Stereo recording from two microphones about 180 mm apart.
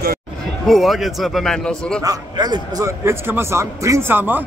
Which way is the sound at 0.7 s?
Centre (ahead or behind).